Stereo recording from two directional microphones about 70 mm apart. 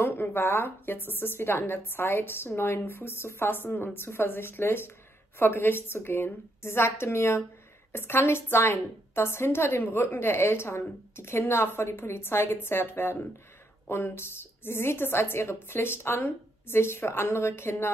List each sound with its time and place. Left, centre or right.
0.0 s a woman's voice: left